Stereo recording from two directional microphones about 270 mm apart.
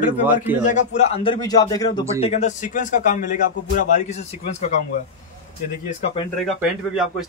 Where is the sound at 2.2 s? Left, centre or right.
Left.